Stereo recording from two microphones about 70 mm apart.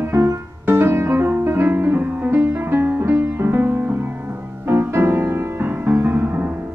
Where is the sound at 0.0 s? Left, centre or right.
Right.